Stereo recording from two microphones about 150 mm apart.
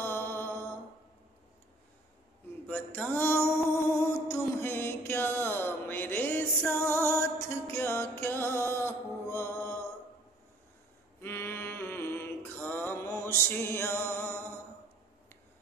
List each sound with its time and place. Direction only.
0.0 s mantra: 15° left (ahead or behind)
2.7 s music: 10° left (ahead or behind)
11.1 s mantra: 15° left (ahead or behind)